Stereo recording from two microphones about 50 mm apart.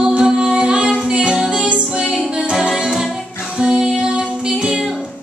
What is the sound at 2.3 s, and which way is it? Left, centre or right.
A capella, centre.